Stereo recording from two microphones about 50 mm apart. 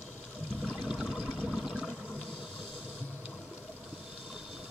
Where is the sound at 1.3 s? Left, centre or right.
Centre.